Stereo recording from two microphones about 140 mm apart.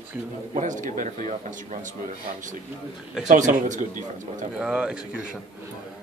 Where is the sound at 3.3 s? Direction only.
65° right (ahead or behind).